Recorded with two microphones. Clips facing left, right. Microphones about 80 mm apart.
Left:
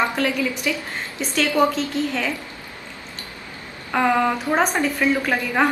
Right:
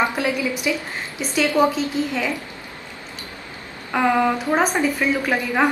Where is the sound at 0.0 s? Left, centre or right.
Centre.